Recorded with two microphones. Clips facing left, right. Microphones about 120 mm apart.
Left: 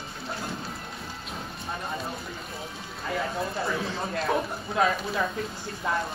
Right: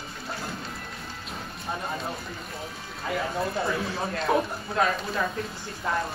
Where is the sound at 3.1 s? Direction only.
Centre (ahead or behind).